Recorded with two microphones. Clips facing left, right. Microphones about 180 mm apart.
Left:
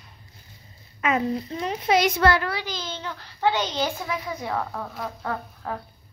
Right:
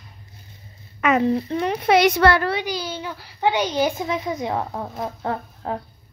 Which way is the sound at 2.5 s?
15° right (ahead or behind).